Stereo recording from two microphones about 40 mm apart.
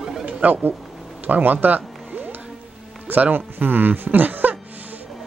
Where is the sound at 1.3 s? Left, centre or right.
Right.